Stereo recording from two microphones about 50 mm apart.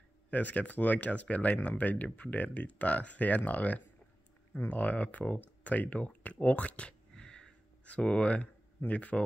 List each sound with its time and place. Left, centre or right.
0.3 s speech: left
7.2 s a sound: centre
7.8 s speech: left